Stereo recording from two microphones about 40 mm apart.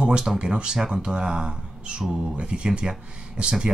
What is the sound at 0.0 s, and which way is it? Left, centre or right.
Speech, centre.